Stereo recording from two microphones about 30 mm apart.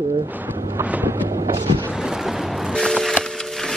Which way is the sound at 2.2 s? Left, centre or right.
Centre.